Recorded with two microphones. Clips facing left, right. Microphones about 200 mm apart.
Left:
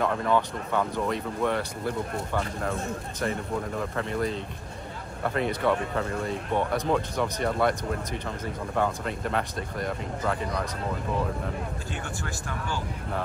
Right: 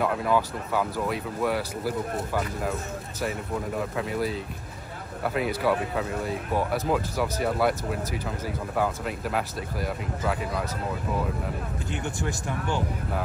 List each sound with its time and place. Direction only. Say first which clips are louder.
0.0 s speech: even; 5° right (ahead or behind)